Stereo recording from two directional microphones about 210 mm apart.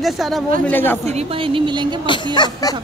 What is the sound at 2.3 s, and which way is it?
Chuckle, 20° left (ahead or behind).